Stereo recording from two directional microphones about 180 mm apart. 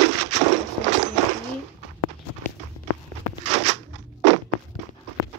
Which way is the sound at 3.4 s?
40° right (ahead or behind).